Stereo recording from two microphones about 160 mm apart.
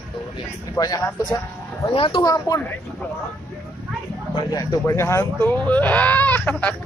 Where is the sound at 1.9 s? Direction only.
35° left (ahead or behind).